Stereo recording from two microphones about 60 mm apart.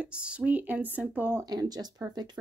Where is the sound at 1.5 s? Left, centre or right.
Right.